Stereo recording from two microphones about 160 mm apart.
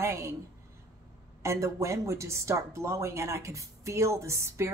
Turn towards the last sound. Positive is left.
turn(degrees=-15)  # may be behind; listen again after turning